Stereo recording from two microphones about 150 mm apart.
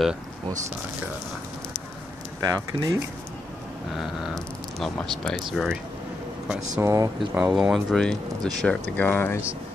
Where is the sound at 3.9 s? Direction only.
5° right (ahead or behind).